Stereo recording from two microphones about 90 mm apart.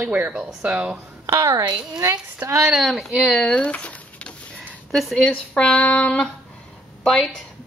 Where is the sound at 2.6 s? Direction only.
Centre (ahead or behind).